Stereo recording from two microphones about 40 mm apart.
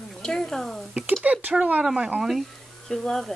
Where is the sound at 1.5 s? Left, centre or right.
Right.